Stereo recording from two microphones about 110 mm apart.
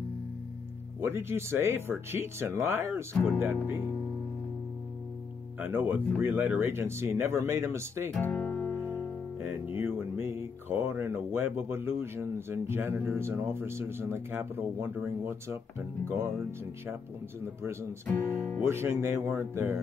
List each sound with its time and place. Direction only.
1.0 s speech: 20° right (ahead or behind)
5.6 s speech: 20° right (ahead or behind)
8.2 s guitar: 15° left (ahead or behind)
9.4 s speech: 20° right (ahead or behind)
18.0 s speech: 15° left (ahead or behind)
18.6 s speech: 25° right (ahead or behind)